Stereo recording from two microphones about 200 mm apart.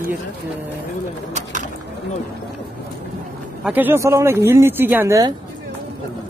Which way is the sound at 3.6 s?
10° right (ahead or behind).